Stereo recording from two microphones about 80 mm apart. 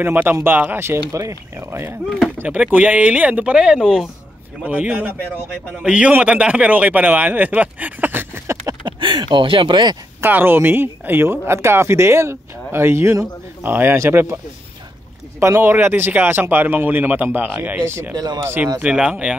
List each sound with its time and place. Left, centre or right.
0.0 s speech: right
2.0 s speech: centre
2.3 s speech: centre
4.6 s speech: centre
8.5 s a sound: right
8.8 s speech: right
10.2 s speech: right
15.4 s speech: right
18.1 s speech: right
18.8 s speech: centre